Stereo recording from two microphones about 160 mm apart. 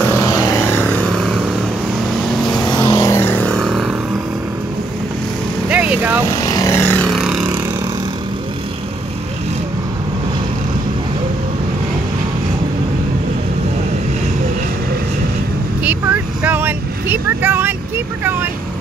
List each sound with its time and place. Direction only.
0.0 s vehicle: 15° left (ahead or behind); by 2.6 s centre (ahead or behind)
2.6 s vehicle: 25° left (ahead or behind); by 3.9 s centre (ahead or behind)
5.7 s vehicle: 10° right (ahead or behind)
6.2 s vehicle: 20° left (ahead or behind)
7.1 s vehicle: centre (ahead or behind)
7.4 s vehicle: 20° right (ahead or behind)
15.8 s vehicle: 10° right (ahead or behind)